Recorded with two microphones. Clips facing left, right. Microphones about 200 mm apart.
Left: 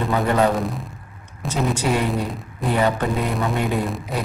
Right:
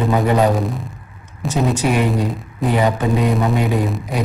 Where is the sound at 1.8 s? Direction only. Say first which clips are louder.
Right 4 dB; 15° right (ahead or behind).